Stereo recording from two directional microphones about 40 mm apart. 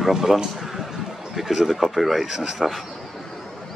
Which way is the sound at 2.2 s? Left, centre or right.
Centre.